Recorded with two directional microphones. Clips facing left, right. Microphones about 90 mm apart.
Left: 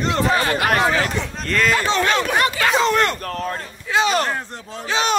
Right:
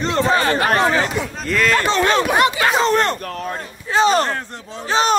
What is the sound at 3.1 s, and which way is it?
Speech, 40° left (ahead or behind).